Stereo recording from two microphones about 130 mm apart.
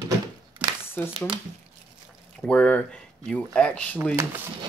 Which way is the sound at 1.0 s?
15° left (ahead or behind).